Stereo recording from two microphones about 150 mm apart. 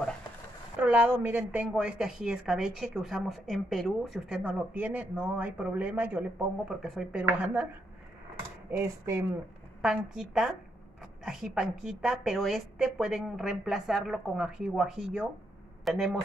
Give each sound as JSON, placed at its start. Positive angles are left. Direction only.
{"t": 0.7, "sound": "a woman's voice", "side_deg": -10}
{"t": 6.7, "sound": "a woman's voice", "side_deg": 0}
{"t": 8.6, "sound": "a woman's voice", "side_deg": -15}
{"t": 9.8, "sound": "a woman's voice", "side_deg": -5}